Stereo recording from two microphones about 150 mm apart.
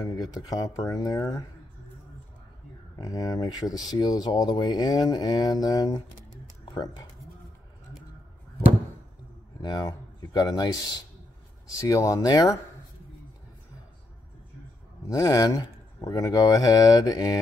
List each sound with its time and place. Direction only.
0.0 s speech: 25° left (ahead or behind)
3.0 s speech: 25° left (ahead or behind)
9.6 s speech: 25° left (ahead or behind)
15.0 s speech: 20° left (ahead or behind)